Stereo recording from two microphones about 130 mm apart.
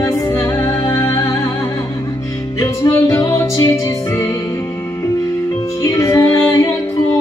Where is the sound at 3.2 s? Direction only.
20° left (ahead or behind).